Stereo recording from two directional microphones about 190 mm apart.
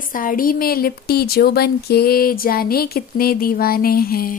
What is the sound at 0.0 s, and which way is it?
A woman's voice, 45° left (ahead or behind).